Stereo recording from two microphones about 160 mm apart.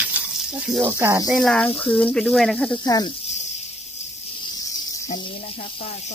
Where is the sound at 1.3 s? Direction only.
5° left (ahead or behind).